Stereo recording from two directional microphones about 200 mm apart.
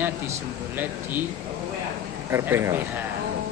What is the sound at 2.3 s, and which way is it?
Speech, 15° right (ahead or behind).